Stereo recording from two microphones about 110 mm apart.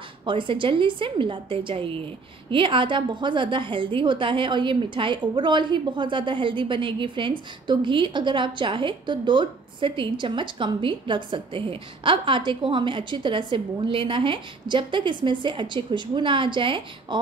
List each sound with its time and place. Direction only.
0.2 s a woman's voice: 50° right (ahead or behind)